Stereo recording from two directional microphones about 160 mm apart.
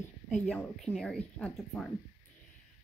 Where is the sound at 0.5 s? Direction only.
5° left (ahead or behind).